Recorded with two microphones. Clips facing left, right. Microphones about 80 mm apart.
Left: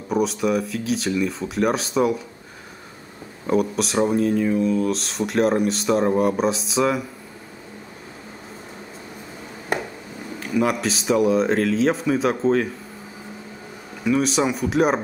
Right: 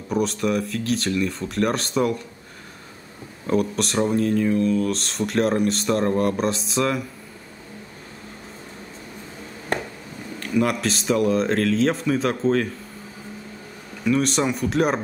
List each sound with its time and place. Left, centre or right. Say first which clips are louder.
0.1 s speech: left 2 dB; centre
3.4 s speech: left 1 dB; centre
9.7 s a sound: left 1 dB; centre
10.4 s speech: even; centre
14.0 s speech: left 1 dB; centre